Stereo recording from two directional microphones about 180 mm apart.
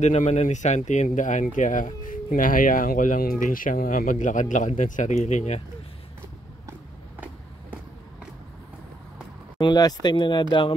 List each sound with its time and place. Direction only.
0.0 s speech: 40° left (ahead or behind)
9.6 s speech: 25° left (ahead or behind)